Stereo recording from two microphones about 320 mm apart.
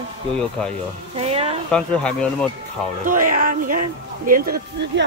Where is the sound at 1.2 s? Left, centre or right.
Centre.